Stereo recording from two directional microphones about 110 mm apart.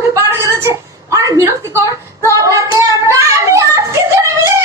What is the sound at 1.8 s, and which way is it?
Child singing, 30° right (ahead or behind).